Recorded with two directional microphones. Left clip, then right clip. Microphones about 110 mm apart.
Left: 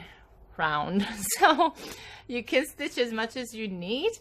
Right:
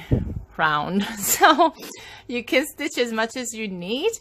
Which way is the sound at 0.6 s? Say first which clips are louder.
Right 6 dB; 40° right (ahead or behind).